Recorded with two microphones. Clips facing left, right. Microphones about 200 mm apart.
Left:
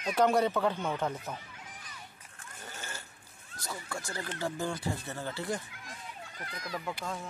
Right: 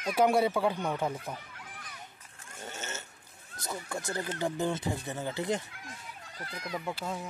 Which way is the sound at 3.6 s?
20° right (ahead or behind).